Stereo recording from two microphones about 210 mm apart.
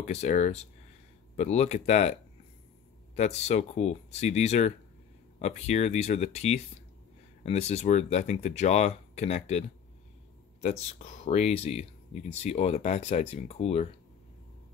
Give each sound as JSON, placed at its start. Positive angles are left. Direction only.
{"t": 0.0, "sound": "speech", "side_deg": 30}
{"t": 3.2, "sound": "speech", "side_deg": 30}